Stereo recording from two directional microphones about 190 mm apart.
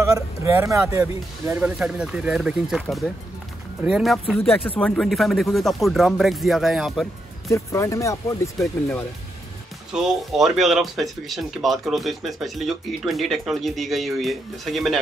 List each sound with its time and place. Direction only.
0.1 s speech: 15° right (ahead or behind)
4.4 s speech: 10° left (ahead or behind)
7.5 s speech: 15° left (ahead or behind)
9.9 s speech: 5° right (ahead or behind)